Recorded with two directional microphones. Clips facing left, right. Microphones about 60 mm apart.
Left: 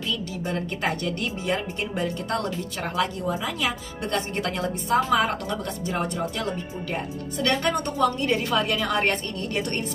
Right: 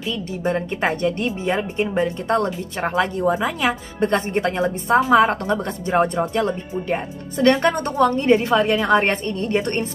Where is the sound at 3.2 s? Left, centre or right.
Right.